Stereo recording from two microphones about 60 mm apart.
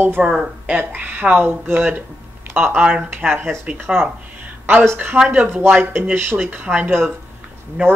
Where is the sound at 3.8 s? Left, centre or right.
Right.